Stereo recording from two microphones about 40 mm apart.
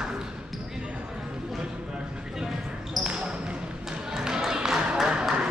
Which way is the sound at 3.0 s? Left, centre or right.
Right.